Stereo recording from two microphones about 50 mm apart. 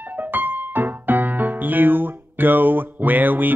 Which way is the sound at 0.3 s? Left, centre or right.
Right.